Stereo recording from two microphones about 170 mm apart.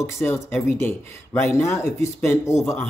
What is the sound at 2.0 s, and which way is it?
Speech, 15° left (ahead or behind).